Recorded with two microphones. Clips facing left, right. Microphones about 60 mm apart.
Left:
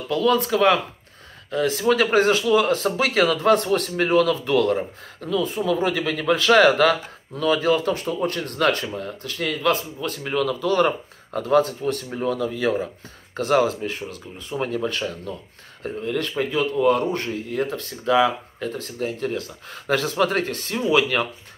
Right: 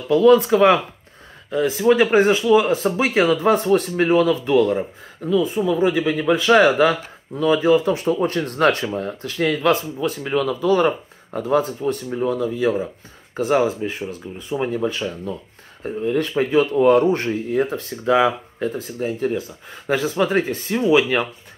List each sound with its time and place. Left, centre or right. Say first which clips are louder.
0.1 s speech: right 7 dB; right
8.3 s speech: right 3 dB; right
12.1 s speech: right 3 dB; centre
13.4 s speech: right 1 dB; centre